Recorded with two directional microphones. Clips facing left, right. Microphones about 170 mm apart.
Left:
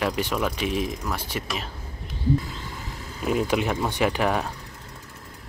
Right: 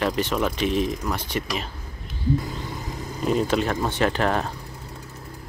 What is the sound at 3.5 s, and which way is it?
Speech, 15° left (ahead or behind).